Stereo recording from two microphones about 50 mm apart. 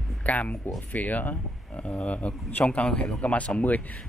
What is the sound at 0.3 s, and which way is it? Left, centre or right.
Speech, left.